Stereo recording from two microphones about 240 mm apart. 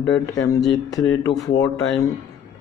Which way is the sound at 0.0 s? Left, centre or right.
Centre.